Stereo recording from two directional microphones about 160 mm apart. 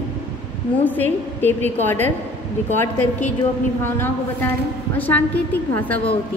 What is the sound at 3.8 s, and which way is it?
A woman's voice, 15° left (ahead or behind).